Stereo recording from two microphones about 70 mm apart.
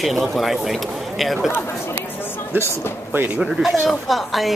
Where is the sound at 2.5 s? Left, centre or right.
Right.